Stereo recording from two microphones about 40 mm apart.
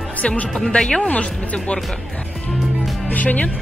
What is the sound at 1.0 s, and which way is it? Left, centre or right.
Speech, left.